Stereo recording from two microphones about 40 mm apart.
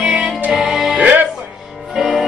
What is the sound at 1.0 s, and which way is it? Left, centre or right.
Music, right.